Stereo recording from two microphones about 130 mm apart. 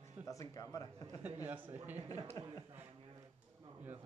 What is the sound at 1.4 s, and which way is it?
Speech, 15° right (ahead or behind).